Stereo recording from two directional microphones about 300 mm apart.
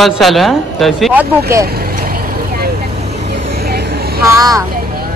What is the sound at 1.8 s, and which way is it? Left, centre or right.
Vehicle, right.